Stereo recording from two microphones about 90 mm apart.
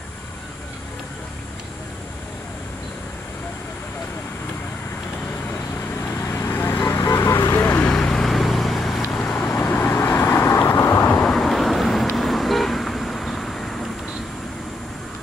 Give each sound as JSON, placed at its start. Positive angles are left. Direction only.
{"t": 5.9, "sound": "vehicle", "side_deg": 35}
{"t": 7.9, "sound": "vehicle", "side_deg": 5}
{"t": 9.2, "sound": "vehicle", "side_deg": 15}
{"t": 11.1, "sound": "vehicle", "side_deg": 5}